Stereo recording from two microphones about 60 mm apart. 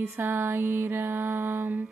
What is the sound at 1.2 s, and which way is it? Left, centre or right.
Music, right.